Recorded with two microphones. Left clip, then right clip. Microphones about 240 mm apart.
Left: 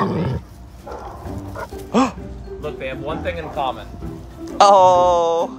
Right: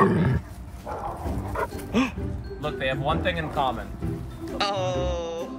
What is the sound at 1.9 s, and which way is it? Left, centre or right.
Music, left.